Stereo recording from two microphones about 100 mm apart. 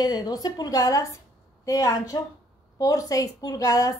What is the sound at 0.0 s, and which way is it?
A woman's voice, 40° left (ahead or behind).